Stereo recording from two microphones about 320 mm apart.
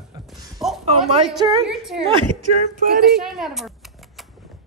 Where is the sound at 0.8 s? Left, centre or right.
Centre.